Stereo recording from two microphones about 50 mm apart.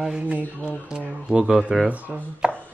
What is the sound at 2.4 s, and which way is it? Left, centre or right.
Chopping, centre.